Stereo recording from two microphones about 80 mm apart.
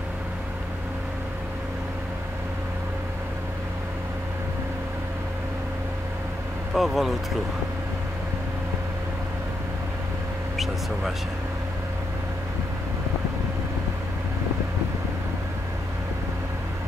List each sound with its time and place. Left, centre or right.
6.7 s speech: centre